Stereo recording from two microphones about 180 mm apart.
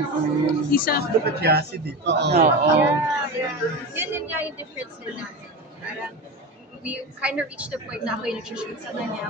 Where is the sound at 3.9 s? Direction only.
10° right (ahead or behind).